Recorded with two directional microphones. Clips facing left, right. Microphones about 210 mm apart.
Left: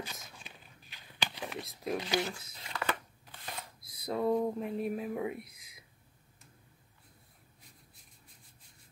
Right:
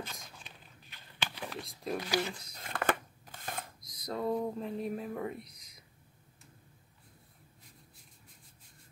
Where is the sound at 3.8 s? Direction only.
5° left (ahead or behind).